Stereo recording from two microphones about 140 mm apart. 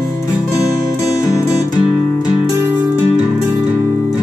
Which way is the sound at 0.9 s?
25° left (ahead or behind).